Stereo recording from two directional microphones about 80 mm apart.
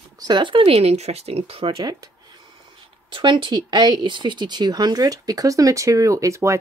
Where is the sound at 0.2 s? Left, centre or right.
Right.